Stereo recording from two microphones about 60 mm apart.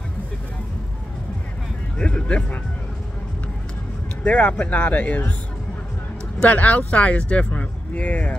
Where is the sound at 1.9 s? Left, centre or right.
Centre.